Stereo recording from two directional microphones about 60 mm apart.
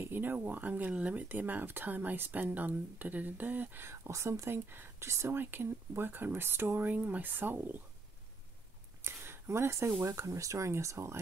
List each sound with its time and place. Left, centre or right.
0.0 s a sound: right
0.5 s speech: right
3.8 s speech: right
5.4 s speech: right
6.9 s speech: right
9.0 s a sound: right
10.0 s speech: right